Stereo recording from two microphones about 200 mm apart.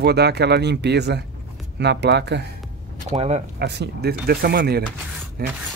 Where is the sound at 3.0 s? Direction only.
35° right (ahead or behind).